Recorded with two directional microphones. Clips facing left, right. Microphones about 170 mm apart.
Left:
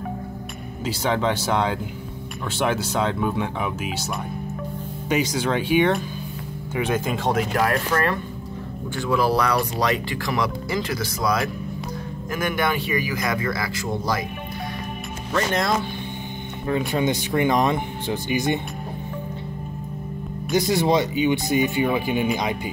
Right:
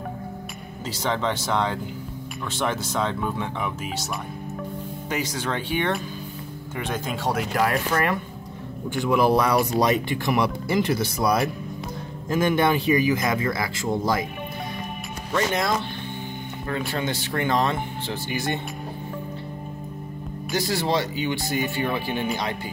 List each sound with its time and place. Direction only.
1.0 s speech: 10° left (ahead or behind)
5.1 s speech: 15° left (ahead or behind); by 14.2 s 25° right (ahead or behind)
15.3 s speech: 5° right (ahead or behind)
16.6 s speech: 15° left (ahead or behind)
20.5 s speech: 20° left (ahead or behind)